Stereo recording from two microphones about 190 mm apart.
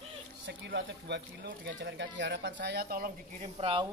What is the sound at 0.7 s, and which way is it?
Speech, 65° right (ahead or behind).